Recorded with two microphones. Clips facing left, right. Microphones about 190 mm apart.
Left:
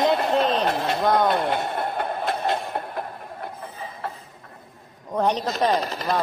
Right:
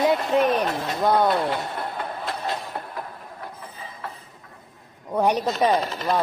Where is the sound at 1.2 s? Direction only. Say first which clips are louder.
Left 1 dB; 60° left (ahead or behind).